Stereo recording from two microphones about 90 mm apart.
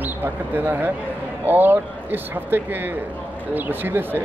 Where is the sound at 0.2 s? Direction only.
25° right (ahead or behind).